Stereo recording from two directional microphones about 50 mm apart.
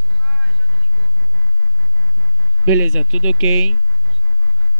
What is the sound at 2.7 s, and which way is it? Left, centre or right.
Speech, right.